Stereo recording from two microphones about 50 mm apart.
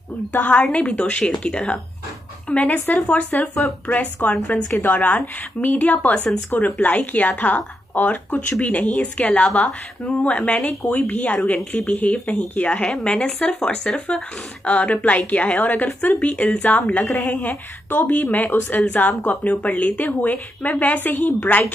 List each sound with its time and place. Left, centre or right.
0.5 s speech: left
2.5 s a woman's voice: left